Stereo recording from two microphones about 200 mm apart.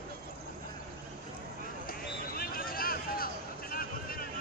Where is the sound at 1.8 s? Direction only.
45° left (ahead or behind).